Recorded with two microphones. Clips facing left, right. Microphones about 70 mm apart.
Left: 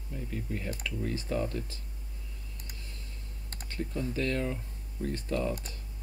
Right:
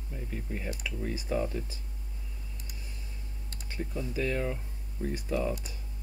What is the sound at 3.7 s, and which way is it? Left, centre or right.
Speech, centre.